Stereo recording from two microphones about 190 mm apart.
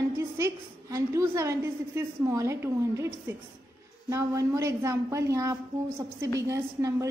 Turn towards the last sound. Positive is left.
turn(degrees=-15)  # may be behind; listen again after turning